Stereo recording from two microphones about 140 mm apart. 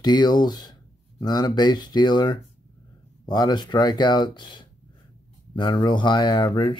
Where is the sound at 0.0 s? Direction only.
30° left (ahead or behind).